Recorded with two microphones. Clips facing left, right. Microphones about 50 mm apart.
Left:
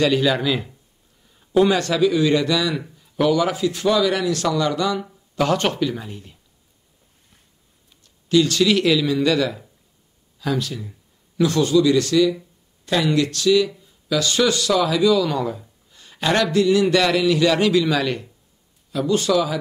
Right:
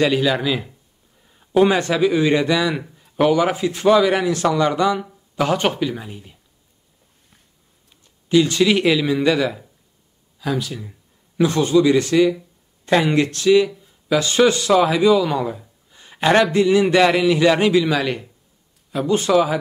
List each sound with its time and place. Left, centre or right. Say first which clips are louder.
0.0 s speech: right 1 dB; centre
1.4 s speech: right 1 dB; right
8.0 s a man's voice: right 1 dB; right
11.3 s speech: right 1 dB; right
16.0 s a sound: right 4 dB; right
16.5 s speech: right 2 dB; right
18.9 s speech: right 1 dB; right